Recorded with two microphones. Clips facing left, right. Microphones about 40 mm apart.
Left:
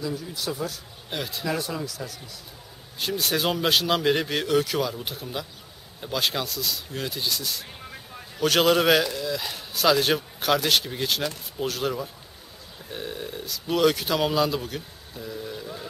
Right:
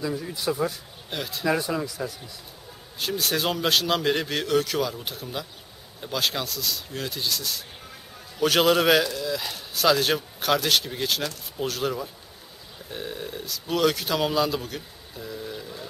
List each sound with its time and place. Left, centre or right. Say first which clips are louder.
0.0 s speech: right 2 dB; centre
1.1 s a man's voice: left 1 dB; centre
1.6 s speech: right 3 dB; right
3.0 s a man's voice: even; centre